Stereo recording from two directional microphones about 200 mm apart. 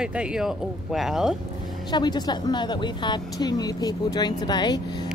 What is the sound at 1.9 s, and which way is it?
Speech, 20° left (ahead or behind).